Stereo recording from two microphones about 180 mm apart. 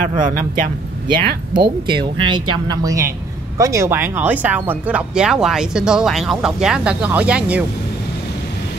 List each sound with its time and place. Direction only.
0.0 s speech: 45° right (ahead or behind)
1.5 s speech: 25° right (ahead or behind); by 7.6 s 5° right (ahead or behind)